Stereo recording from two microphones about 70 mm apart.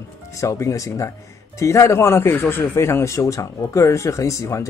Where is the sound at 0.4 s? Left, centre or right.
Left.